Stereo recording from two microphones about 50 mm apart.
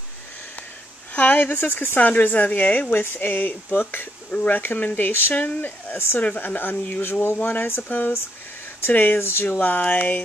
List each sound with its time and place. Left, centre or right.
1.1 s speech: left
2.0 s speech: left
2.9 s speech: left
7.3 s speech: left
7.7 s speech: left
9.6 s speech: left